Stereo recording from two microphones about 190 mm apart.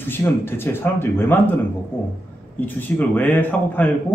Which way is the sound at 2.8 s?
10° left (ahead or behind).